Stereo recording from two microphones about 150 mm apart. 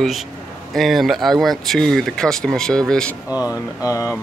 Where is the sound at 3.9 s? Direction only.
20° left (ahead or behind).